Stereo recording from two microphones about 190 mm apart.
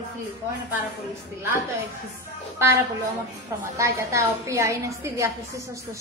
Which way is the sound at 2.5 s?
15° right (ahead or behind).